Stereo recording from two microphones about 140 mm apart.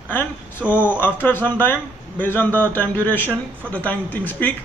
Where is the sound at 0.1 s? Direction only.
15° left (ahead or behind).